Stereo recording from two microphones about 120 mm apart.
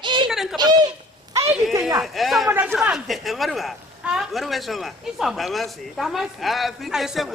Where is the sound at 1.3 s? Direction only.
25° right (ahead or behind).